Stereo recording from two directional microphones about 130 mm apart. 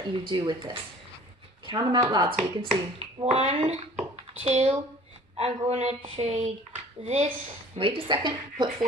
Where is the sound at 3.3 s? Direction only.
55° right (ahead or behind).